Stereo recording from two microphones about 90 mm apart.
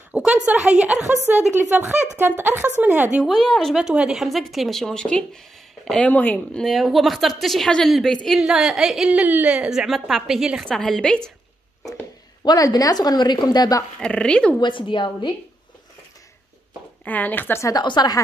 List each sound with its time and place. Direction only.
0.1 s a woman's voice: 10° right (ahead or behind)
1.0 s a woman's voice: 25° right (ahead or behind)
3.3 s a woman's voice: 5° left (ahead or behind)
3.7 s a woman's voice: 10° right (ahead or behind); by 6.7 s 10° left (ahead or behind)
6.7 s a woman's voice: centre (ahead or behind)
8.4 s a woman's voice: 5° right (ahead or behind)
10.6 s speech: 5° left (ahead or behind)
12.4 s a woman's voice: 45° left (ahead or behind)
14.0 s speech: 10° left (ahead or behind)
14.6 s a woman's voice: 65° left (ahead or behind)
17.0 s speech: 20° left (ahead or behind)
17.8 s a woman's voice: 50° left (ahead or behind)